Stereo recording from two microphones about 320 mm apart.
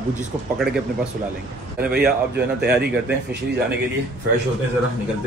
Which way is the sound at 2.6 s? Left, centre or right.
Right.